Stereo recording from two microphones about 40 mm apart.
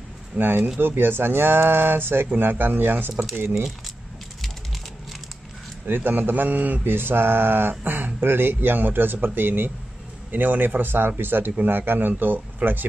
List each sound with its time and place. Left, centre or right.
0.4 s a man's voice: right
5.9 s a man's voice: right
7.8 s a man's voice: right
12.1 s speech: right